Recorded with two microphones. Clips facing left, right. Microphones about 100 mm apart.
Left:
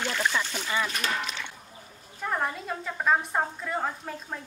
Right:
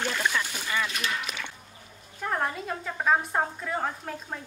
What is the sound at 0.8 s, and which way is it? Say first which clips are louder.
Speech: left 1 dB; 35° left (ahead or behind).